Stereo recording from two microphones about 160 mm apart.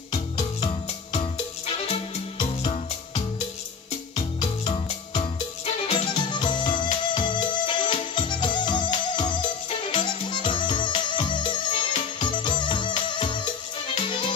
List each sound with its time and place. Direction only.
1.1 s music: 40° left (ahead or behind)
4.1 s music: 40° left (ahead or behind)
5.9 s music: 30° left (ahead or behind)